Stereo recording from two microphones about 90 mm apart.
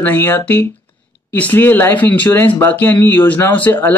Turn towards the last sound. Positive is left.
turn(degrees=20)  # may be behind; listen again after turning